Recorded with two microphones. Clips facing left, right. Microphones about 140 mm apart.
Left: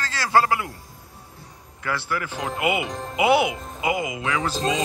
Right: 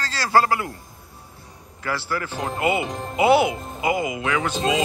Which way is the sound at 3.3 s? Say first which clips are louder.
Right 2 dB; 20° left (ahead or behind).